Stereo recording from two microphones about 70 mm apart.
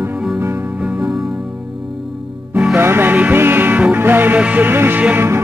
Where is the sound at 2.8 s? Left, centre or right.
Right.